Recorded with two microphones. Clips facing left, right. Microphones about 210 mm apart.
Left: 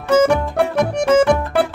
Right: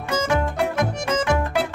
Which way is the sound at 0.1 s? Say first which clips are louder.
Left 8 dB; 65° left (ahead or behind).